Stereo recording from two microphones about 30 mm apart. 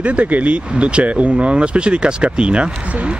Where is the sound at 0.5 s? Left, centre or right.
Right.